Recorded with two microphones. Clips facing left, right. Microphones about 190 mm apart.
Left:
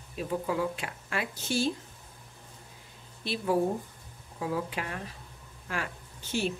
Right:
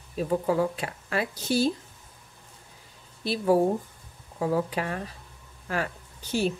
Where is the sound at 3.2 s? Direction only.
40° right (ahead or behind).